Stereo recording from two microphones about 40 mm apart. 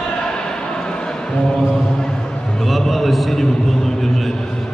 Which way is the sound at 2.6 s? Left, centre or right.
Centre.